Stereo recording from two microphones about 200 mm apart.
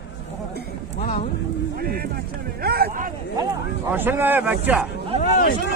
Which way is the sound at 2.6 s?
50° right (ahead or behind).